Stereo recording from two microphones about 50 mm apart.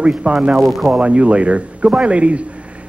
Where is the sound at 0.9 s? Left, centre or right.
Right.